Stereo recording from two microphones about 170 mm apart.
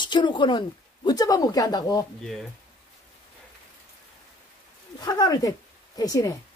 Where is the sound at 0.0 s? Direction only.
25° left (ahead or behind).